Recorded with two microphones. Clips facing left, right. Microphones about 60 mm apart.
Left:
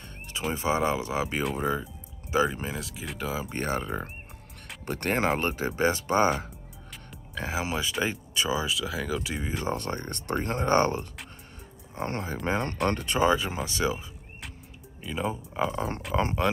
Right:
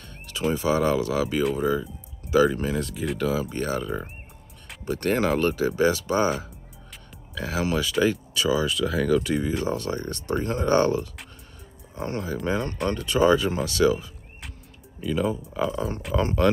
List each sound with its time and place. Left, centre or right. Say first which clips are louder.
0.6 s speech: right 3 dB; left
2.3 s speech: right 6 dB; centre
2.7 s speech: right 9 dB; centre
3.4 s speech: right 3 dB; left
7.5 s speech: right 6 dB; centre
8.6 s speech: right 7 dB; centre
9.7 s speech: right 3 dB; left
13.2 s speech: right 5 dB; left
15.0 s speech: right 6 dB; centre
15.6 s speech: right 1 dB; left
16.1 s speech: right 2 dB; left